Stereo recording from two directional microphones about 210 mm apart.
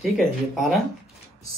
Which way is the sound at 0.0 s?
Centre (ahead or behind).